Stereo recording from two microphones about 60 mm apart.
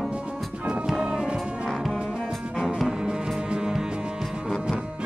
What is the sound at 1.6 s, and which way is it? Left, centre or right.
Music, centre.